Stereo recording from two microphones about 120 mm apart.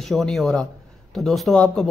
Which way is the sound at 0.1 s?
Centre (ahead or behind).